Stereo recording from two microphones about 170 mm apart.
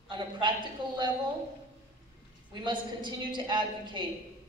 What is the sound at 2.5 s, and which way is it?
Speech, 30° right (ahead or behind).